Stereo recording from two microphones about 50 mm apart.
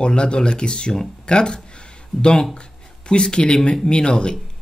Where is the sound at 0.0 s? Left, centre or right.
Centre.